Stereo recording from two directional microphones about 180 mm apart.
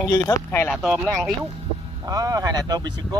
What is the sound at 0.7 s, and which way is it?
Speech, centre (ahead or behind).